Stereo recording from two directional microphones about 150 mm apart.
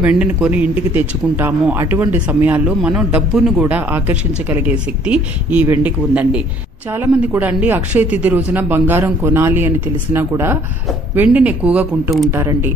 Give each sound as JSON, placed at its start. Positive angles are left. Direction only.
{"t": 0.0, "sound": "a man's voice", "side_deg": -10}
{"t": 12.3, "sound": "a man's voice", "side_deg": -15}